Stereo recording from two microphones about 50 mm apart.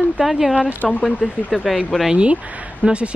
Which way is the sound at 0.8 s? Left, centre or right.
Left.